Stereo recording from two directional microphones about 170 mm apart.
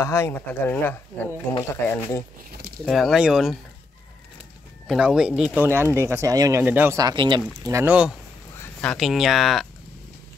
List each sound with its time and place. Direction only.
0.0 s speech: 15° left (ahead or behind)
2.8 s speech: centre (ahead or behind)
4.8 s speech: 5° right (ahead or behind)
8.5 s speech: 5° left (ahead or behind)